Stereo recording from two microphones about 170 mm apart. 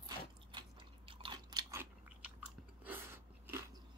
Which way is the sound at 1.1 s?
30° right (ahead or behind).